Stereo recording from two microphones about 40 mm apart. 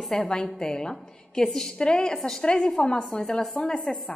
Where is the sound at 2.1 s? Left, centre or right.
Centre.